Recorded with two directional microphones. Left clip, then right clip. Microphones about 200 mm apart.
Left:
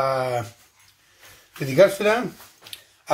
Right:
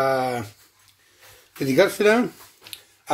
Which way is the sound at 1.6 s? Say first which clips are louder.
Left 1 dB; 50° right (ahead or behind).